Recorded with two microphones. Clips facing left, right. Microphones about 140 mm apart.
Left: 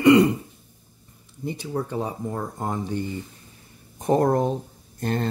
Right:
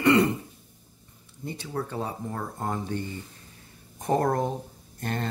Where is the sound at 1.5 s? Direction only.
15° left (ahead or behind).